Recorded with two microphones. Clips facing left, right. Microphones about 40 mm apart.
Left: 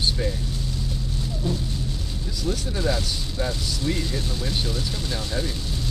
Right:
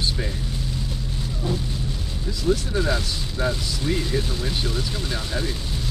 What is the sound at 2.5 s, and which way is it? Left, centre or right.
Speech, centre.